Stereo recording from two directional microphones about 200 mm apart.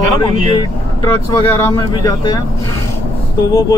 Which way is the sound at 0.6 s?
20° left (ahead or behind).